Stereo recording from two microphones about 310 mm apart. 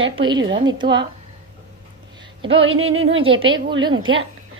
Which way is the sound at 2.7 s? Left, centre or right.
Right.